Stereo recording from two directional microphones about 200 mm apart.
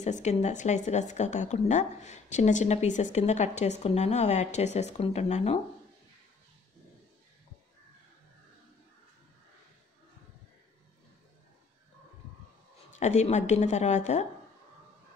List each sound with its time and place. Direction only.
0.0 s speech: 35° left (ahead or behind)
12.9 s speech: 35° left (ahead or behind)